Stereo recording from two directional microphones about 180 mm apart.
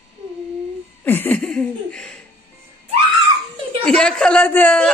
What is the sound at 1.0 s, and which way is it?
A woman's voice, 10° left (ahead or behind).